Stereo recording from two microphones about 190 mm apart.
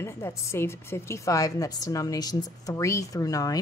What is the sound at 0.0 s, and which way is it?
A woman's voice, 15° left (ahead or behind).